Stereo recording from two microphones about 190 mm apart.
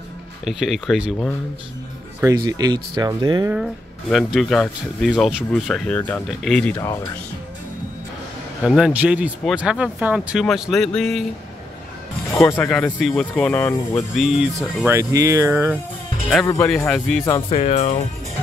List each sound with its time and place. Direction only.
0.5 s speech: centre (ahead or behind)
2.1 s speech: 15° right (ahead or behind)
3.5 s speech: centre (ahead or behind)
8.6 s speech: 5° right (ahead or behind)
12.4 s speech: 10° left (ahead or behind)
14.1 s speech: centre (ahead or behind)
15.0 s speech: 15° right (ahead or behind)
16.4 s speech: 15° left (ahead or behind)
16.7 s speech: 5° left (ahead or behind)
17.5 s speech: 35° left (ahead or behind)